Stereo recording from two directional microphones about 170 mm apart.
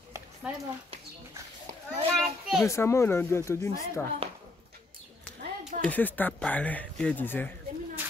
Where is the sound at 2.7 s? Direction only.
15° left (ahead or behind).